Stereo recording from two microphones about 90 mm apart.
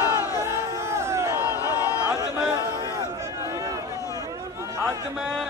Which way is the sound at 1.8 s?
35° left (ahead or behind).